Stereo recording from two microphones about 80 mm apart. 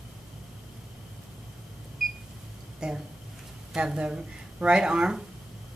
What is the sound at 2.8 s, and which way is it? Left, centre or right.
A woman's voice, centre.